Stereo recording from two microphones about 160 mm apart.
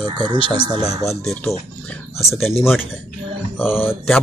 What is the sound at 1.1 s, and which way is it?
Speech, centre (ahead or behind).